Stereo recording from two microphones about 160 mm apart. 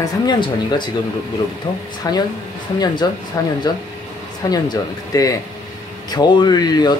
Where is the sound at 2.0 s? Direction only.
20° left (ahead or behind).